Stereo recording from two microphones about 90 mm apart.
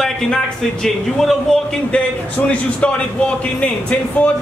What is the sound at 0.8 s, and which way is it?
A man's voice, 5° left (ahead or behind).